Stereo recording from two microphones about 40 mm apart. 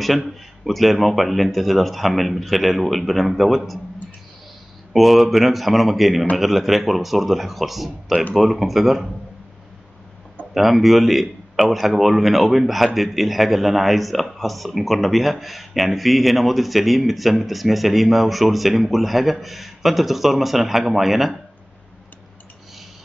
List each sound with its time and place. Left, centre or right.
0.7 s a man's voice: centre
4.9 s a man's voice: centre
10.5 s a man's voice: centre